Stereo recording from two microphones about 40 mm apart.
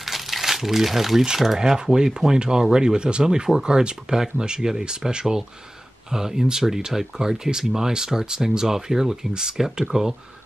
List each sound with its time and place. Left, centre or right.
0.0 s crumpling: centre
1.6 s speech: centre